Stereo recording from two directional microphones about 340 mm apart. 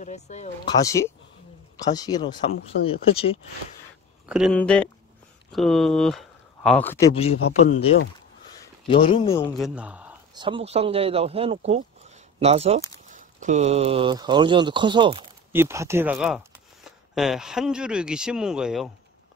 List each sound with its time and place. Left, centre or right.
0.0 s speech: centre
4.3 s speech: centre
8.8 s speech: centre
9.6 s speech: centre